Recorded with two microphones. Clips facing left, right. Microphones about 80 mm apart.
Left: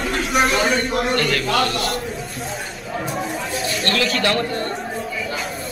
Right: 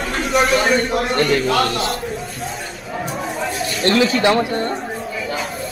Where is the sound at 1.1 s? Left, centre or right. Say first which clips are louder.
Right 6 dB; centre.